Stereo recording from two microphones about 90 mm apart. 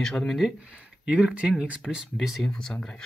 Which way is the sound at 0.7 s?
10° right (ahead or behind).